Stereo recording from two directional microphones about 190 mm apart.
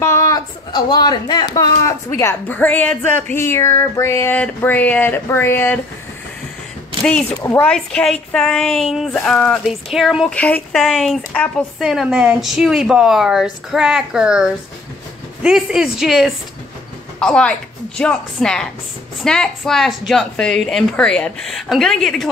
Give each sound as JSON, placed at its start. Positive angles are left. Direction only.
{"t": 0.0, "sound": "a sound", "side_deg": 15}
{"t": 2.1, "sound": "speech", "side_deg": 10}
{"t": 7.4, "sound": "a woman's voice", "side_deg": 10}